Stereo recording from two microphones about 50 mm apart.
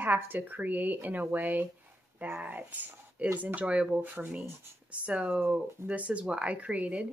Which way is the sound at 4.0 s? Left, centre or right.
Right.